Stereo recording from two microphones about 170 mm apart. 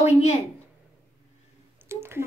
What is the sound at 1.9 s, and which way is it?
Speech, 15° right (ahead or behind).